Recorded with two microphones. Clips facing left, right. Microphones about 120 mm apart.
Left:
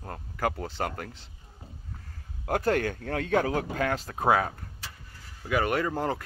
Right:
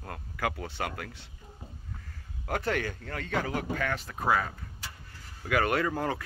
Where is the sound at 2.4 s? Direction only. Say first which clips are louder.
Left 5 dB; 40° left (ahead or behind).